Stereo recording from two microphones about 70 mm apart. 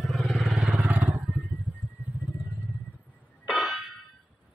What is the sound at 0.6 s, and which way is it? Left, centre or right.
Vehicle, right.